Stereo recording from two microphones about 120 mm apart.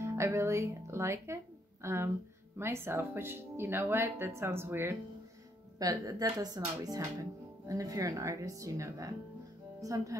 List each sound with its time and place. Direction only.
0.0 s speech: 20° right (ahead or behind)